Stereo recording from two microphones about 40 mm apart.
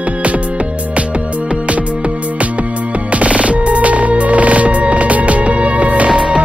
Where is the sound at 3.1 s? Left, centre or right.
Right.